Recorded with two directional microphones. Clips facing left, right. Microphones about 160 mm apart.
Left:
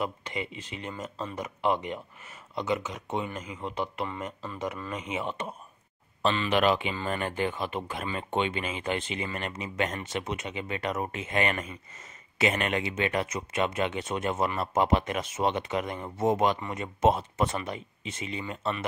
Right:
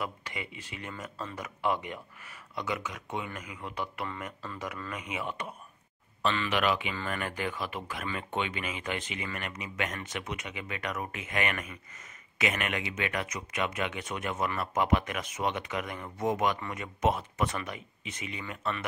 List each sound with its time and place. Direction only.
0.0 s speech: 25° left (ahead or behind)